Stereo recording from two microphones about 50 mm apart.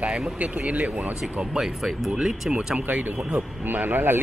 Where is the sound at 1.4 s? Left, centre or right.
Centre.